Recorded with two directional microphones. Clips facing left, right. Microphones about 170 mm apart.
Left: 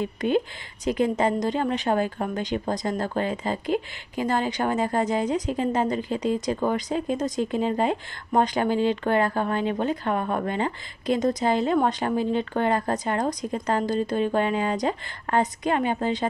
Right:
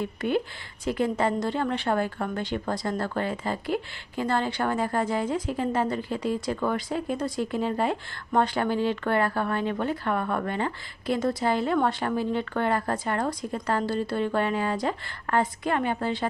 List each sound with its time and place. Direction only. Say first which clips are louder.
0.0 s a woman's voice: left 3 dB; 20° left (ahead or behind)